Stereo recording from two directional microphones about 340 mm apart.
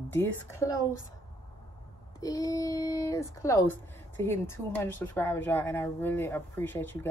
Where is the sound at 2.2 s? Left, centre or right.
Centre.